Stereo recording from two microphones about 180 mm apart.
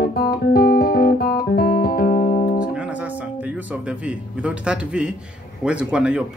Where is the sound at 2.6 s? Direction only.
5° right (ahead or behind).